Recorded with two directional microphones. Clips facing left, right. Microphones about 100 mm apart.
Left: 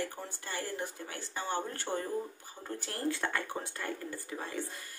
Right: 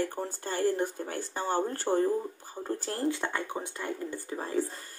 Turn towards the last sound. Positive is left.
turn(degrees=-35)  # may be behind; listen again after turning